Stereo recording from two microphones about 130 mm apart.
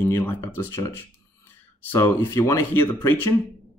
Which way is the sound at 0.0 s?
15° left (ahead or behind).